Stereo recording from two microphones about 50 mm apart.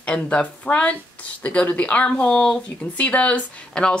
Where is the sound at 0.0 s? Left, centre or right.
Left.